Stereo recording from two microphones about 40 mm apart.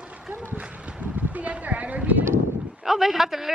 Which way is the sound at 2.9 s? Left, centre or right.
Centre.